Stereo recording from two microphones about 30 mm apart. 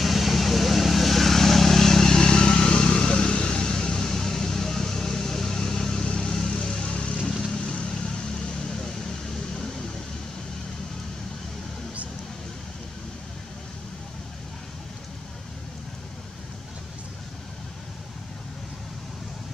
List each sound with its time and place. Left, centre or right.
0.0 s vehicle: centre
6.7 s vehicle: left
8.6 s vehicle: centre